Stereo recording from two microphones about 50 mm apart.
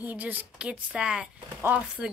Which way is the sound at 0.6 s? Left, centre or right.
Centre.